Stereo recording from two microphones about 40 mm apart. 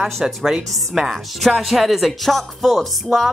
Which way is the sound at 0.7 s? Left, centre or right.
Centre.